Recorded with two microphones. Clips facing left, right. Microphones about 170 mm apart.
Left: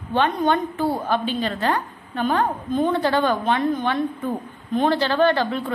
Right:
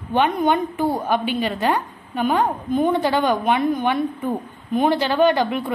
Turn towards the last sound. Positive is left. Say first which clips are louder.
# right 2 dB
turn(degrees=-15)  # may be behind; listen again after turning